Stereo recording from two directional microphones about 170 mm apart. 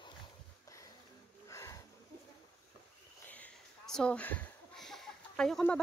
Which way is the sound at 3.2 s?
10° left (ahead or behind).